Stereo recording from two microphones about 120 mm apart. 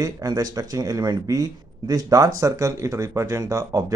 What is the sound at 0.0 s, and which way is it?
Speech, 30° right (ahead or behind).